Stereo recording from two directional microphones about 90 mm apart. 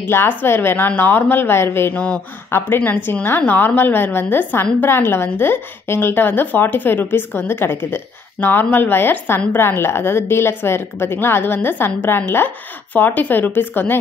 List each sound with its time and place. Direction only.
0.0 s a woman's voice: 25° left (ahead or behind)
2.0 s a woman's voice: 15° left (ahead or behind)